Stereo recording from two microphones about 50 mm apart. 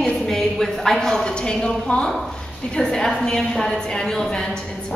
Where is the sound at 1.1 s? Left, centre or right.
Centre.